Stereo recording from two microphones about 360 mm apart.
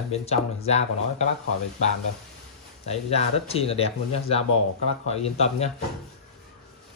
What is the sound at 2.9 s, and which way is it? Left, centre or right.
Speech, centre.